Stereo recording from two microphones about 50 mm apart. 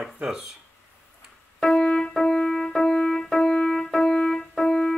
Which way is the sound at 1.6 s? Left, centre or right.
Centre.